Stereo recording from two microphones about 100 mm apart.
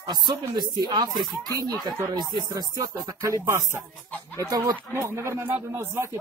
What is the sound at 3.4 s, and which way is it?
Speech, 30° right (ahead or behind).